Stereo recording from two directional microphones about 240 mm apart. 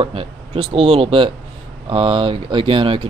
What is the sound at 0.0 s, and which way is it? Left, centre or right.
Speech, right.